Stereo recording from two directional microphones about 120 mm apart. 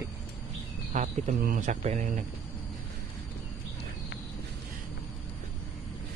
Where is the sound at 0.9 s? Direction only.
80° right.